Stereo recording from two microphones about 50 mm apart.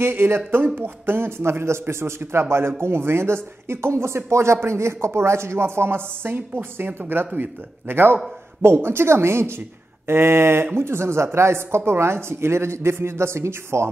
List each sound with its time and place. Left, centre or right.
0.0 s speech: right